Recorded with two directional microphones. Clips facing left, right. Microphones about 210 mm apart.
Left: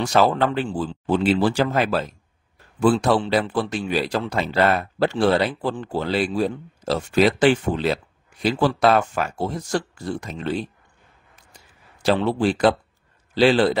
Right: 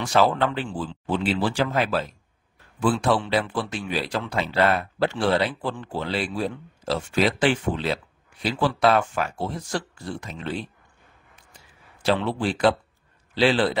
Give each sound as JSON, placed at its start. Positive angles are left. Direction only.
{"t": 0.0, "sound": "speech", "side_deg": 40}
{"t": 12.0, "sound": "a man's voice", "side_deg": 40}